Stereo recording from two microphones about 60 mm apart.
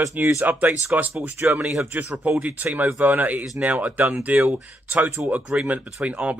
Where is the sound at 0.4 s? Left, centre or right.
Right.